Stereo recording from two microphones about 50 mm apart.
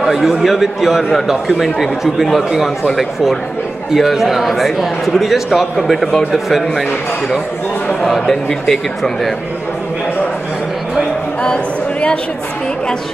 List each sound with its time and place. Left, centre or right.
0.0 s a man's voice: centre
3.9 s a man's voice: centre
8.0 s a man's voice: centre
11.4 s a sound: centre